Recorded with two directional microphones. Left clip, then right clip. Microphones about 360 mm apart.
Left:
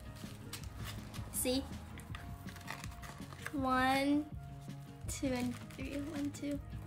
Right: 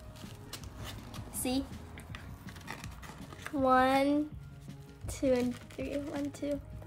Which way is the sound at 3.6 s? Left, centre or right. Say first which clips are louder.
Right 6 dB; centre.